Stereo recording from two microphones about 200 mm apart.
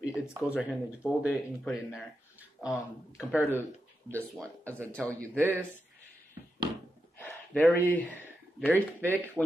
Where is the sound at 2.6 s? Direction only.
15° left (ahead or behind).